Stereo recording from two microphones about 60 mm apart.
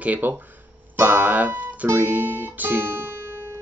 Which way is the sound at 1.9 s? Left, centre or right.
Right.